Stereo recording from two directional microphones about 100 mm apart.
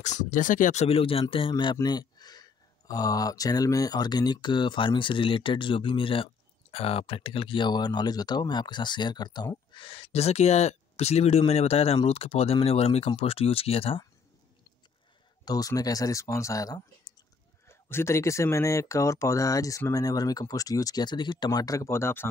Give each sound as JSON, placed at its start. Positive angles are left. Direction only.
{"t": 0.8, "sound": "speech", "side_deg": 70}
{"t": 1.8, "sound": "speech", "side_deg": 40}
{"t": 9.8, "sound": "speech", "side_deg": 70}
{"t": 15.4, "sound": "speech", "side_deg": 40}
{"t": 17.6, "sound": "speech", "side_deg": 25}
{"t": 21.5, "sound": "speech", "side_deg": 35}